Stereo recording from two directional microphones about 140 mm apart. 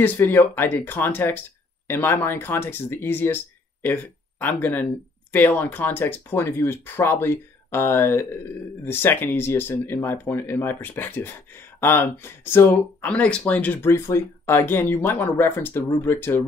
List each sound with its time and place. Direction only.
0.0 s speech: 15° left (ahead or behind)